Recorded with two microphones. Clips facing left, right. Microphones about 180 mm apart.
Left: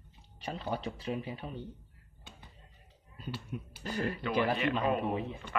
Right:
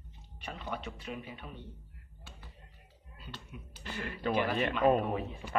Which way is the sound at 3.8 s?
40° left (ahead or behind).